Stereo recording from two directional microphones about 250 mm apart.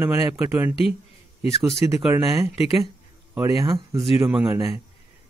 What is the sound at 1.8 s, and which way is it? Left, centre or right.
Speech, centre.